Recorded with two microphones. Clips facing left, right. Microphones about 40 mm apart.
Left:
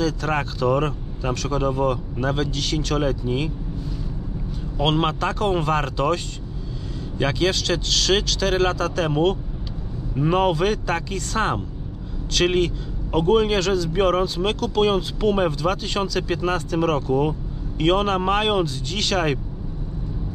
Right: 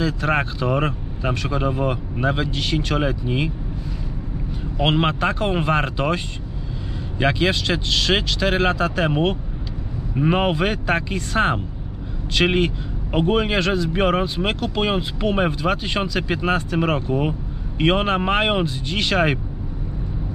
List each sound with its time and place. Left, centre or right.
0.0 s a man's voice: right
4.7 s a man's voice: centre